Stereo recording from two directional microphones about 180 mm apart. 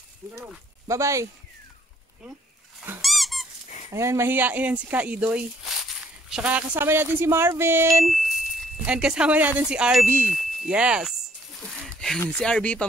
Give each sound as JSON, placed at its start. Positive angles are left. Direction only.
{"t": 0.2, "sound": "speech", "side_deg": -15}
{"t": 3.0, "sound": "squeak", "side_deg": 0}
{"t": 3.9, "sound": "speech", "side_deg": -15}
{"t": 8.1, "sound": "speech", "side_deg": -5}
{"t": 11.6, "sound": "a sound", "side_deg": 0}
{"t": 12.3, "sound": "speech", "side_deg": 5}